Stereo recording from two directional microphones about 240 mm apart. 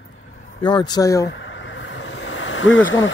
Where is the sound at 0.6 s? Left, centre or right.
Centre.